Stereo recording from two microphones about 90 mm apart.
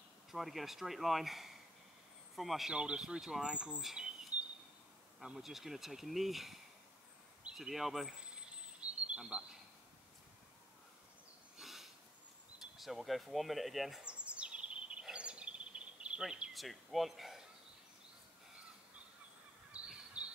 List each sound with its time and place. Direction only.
0.3 s speech: centre (ahead or behind)
11.5 s a sound: 5° right (ahead or behind)
12.7 s speech: centre (ahead or behind)
14.0 s bird vocalization: 15° right (ahead or behind)
16.0 s speech: 10° right (ahead or behind)
19.7 s bird: 15° right (ahead or behind)